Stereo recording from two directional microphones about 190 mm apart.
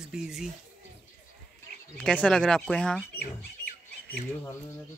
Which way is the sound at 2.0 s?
5° left (ahead or behind).